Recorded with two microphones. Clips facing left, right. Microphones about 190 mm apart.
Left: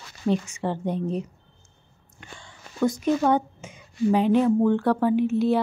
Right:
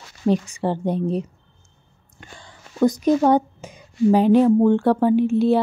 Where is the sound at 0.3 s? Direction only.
35° right (ahead or behind).